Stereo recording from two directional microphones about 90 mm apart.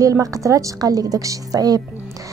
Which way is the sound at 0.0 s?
40° right (ahead or behind).